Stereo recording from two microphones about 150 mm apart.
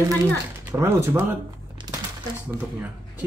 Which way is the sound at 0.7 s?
15° right (ahead or behind).